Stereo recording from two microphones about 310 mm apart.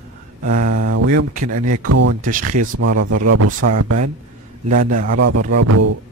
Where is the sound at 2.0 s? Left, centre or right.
Right.